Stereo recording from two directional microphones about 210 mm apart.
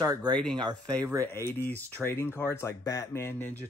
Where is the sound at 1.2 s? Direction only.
10° left (ahead or behind).